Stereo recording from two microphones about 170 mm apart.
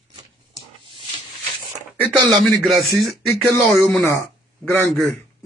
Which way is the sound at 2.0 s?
5° left (ahead or behind).